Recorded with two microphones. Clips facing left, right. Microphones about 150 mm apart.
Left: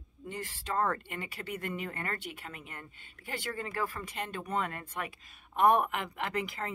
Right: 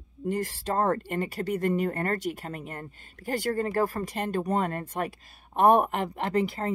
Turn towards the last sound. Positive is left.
turn(degrees=-35)  # may be behind; listen again after turning